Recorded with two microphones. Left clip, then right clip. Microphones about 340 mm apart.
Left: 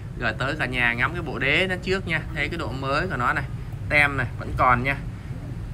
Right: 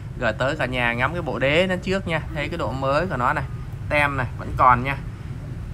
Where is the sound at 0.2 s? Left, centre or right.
Centre.